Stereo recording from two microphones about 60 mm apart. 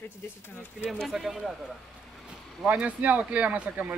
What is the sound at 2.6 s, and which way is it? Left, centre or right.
Speech, right.